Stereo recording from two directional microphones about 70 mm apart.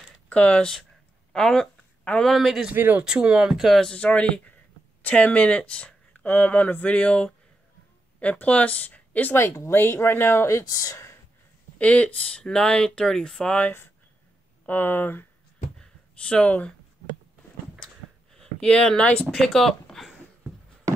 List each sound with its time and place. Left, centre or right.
0.3 s speech: centre
2.7 s speech: right
3.0 s speech: centre
3.5 s speech: centre
3.9 s speech: centre
9.4 s speech: left
10.7 s speech: left
11.8 s speech: centre
14.7 s speech: left
15.8 s a sound: centre
17.7 s a sound: centre
19.3 s speech: centre